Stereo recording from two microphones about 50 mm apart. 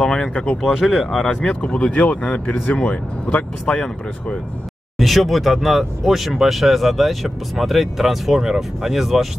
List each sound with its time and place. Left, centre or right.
0.0 s speech: centre
0.6 s speech: centre
1.2 s speech: centre
4.9 s speech: centre